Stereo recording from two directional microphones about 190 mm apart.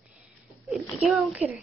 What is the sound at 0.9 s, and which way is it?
Speech, 10° right (ahead or behind).